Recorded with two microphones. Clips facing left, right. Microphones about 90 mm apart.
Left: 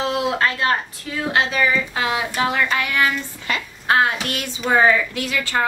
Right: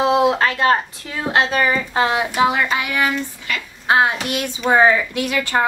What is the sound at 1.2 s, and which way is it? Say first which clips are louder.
Speech: right 2 dB; 30° right (ahead or behind).